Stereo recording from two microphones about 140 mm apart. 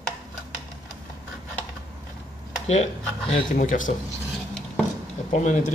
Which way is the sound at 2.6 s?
50° left (ahead or behind).